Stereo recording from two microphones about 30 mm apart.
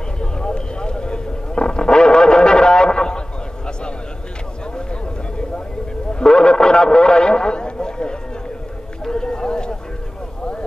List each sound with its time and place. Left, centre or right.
0.2 s vehicle: left
6.2 s radio: left
9.1 s a sound: left